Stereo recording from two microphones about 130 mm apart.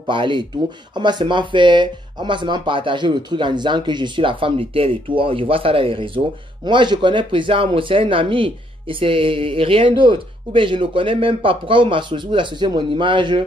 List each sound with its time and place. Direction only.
0.1 s speech: 40° right (ahead or behind)